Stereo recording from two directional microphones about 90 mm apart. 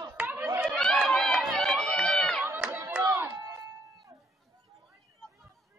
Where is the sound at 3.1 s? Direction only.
25° right (ahead or behind).